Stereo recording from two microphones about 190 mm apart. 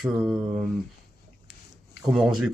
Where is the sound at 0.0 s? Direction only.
Centre (ahead or behind).